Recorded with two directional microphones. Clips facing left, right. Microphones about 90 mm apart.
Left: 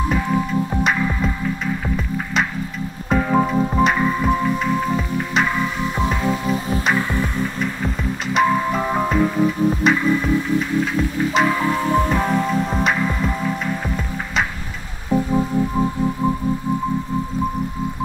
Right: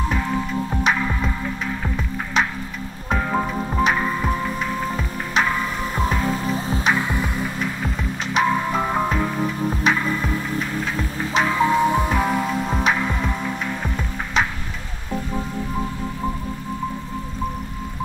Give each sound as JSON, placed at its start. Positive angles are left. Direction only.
{"t": 0.8, "sound": "music", "side_deg": 0}
{"t": 3.1, "sound": "music", "side_deg": 0}
{"t": 7.0, "sound": "music", "side_deg": -15}
{"t": 7.6, "sound": "music", "side_deg": 0}
{"t": 11.6, "sound": "music", "side_deg": -10}